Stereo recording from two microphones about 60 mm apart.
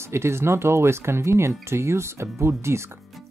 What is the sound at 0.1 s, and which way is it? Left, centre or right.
Speech, right.